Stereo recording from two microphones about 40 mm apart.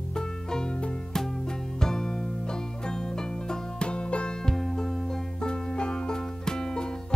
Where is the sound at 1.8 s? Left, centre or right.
Centre.